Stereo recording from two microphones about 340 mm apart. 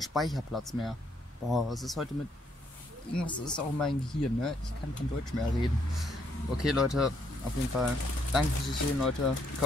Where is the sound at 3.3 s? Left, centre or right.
Centre.